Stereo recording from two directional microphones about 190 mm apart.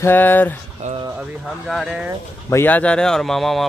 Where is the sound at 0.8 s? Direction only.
40° right (ahead or behind).